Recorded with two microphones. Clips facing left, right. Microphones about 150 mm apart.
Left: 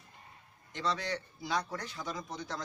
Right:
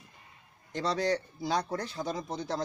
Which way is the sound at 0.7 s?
35° right (ahead or behind).